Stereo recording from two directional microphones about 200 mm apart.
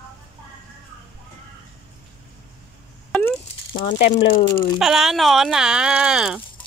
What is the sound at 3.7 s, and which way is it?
Speech, 30° left (ahead or behind).